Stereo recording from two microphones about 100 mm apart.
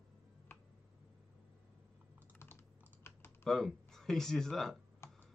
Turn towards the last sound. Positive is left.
turn(degrees=30)  # may be behind; listen again after turning